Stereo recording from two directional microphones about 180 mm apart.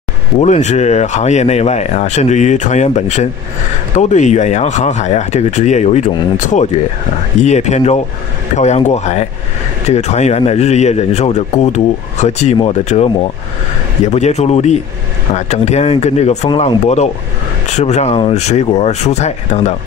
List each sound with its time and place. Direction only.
0.4 s speech: 40° left (ahead or behind)